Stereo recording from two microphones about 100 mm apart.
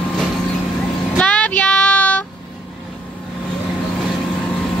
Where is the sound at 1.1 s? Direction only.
10° left (ahead or behind).